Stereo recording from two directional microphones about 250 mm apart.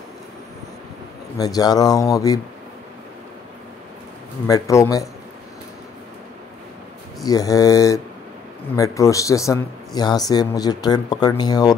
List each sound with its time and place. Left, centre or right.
1.4 s a man's voice: centre
4.5 s a man's voice: centre
7.2 s a man's voice: centre